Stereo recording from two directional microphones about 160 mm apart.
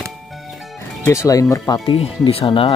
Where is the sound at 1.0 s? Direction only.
20° left (ahead or behind).